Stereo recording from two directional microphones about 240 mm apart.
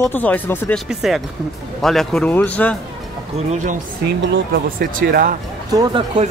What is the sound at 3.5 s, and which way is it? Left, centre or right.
Speech, right.